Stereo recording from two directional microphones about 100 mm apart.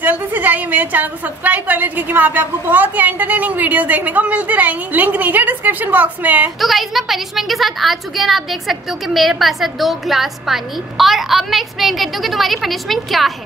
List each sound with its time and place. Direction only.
0.0 s a woman's voice: 20° right (ahead or behind)
6.6 s a woman's voice: centre (ahead or behind)